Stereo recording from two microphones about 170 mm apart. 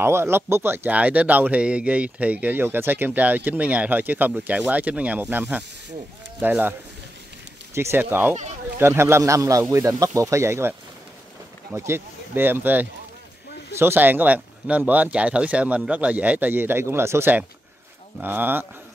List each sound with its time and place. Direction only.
0.0 s speech: 15° right (ahead or behind)
7.7 s speech: 15° right (ahead or behind)